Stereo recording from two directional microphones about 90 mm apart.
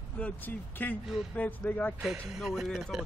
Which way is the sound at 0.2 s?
20° left (ahead or behind).